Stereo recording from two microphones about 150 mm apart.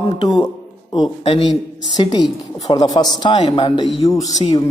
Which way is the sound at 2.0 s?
25° left (ahead or behind).